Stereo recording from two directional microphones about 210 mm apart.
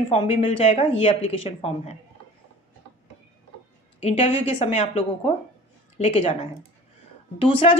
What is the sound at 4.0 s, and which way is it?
Speech, 30° left (ahead or behind).